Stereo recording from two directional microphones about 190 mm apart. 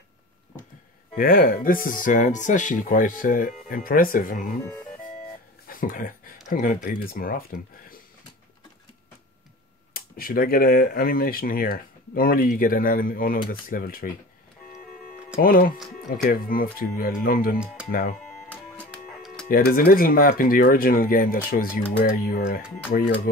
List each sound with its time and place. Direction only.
1.1 s speech: 50° left (ahead or behind)
5.7 s a sound: 45° left (ahead or behind)
6.5 s speech: 45° left (ahead or behind)
9.9 s speech: 50° left (ahead or behind)
15.4 s speech: 50° left (ahead or behind)
17.8 s speech: 5° right (ahead or behind)
18.2 s music: 5° left (ahead or behind)
19.4 s speech: 50° left (ahead or behind)